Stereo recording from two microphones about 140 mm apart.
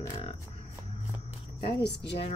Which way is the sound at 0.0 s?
40° left (ahead or behind).